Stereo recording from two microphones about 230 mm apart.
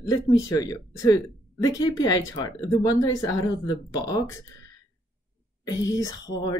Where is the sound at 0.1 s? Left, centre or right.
Centre.